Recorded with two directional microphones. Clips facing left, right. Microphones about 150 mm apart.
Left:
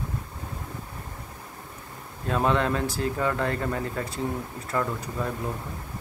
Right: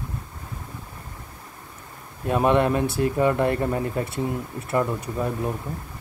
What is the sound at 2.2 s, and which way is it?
Speech, 15° right (ahead or behind).